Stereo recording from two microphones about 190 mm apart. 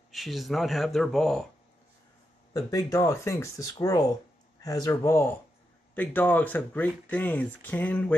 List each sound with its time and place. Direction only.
0.1 s speech: centre (ahead or behind)
2.5 s speech: 20° left (ahead or behind)